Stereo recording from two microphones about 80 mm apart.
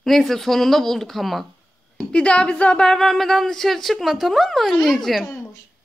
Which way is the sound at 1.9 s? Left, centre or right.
Centre.